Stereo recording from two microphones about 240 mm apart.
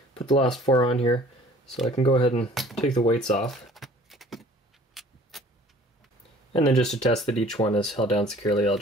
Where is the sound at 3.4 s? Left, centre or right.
Centre.